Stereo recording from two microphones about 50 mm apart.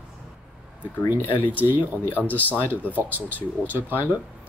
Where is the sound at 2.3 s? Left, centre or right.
Left.